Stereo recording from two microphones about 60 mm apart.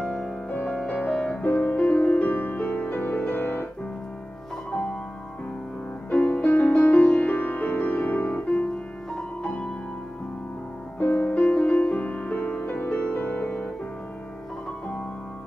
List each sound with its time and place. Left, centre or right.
0.0 s music: centre
0.5 s music: left
1.1 s music: centre
1.4 s music: left
6.0 s music: left
11.0 s music: left